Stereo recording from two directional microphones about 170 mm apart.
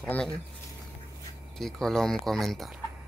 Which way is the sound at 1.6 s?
5° left (ahead or behind).